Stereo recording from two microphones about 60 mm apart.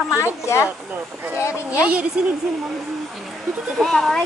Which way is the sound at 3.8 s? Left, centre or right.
Centre.